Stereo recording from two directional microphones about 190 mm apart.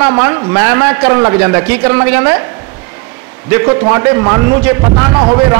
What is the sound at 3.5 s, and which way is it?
A man's voice, 20° right (ahead or behind).